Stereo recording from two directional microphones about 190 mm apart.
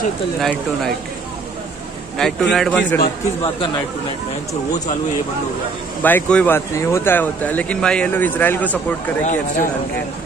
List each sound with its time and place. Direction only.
0.4 s a man's voice: centre (ahead or behind)
2.1 s a man's voice: centre (ahead or behind)
3.4 s speech: 25° left (ahead or behind)
6.0 s speech: 5° left (ahead or behind)
9.2 s a man's voice: 40° left (ahead or behind)